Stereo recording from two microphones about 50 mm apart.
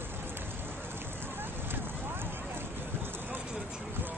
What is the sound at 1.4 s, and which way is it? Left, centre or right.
Vehicle, right.